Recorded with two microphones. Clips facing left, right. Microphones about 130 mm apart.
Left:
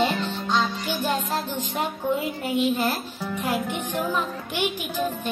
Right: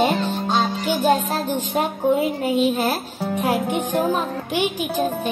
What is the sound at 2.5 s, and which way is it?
Speech, 15° right (ahead or behind).